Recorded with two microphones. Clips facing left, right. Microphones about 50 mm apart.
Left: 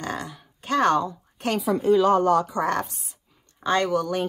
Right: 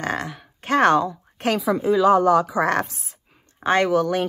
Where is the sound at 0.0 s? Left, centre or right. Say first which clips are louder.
Right 5 dB; right.